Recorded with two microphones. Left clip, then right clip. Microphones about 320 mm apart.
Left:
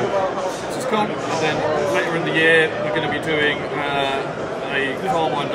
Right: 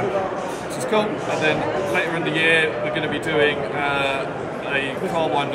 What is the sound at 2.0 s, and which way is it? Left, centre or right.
A man's voice, centre.